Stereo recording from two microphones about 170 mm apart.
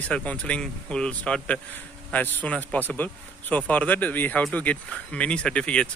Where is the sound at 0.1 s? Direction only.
5° left (ahead or behind).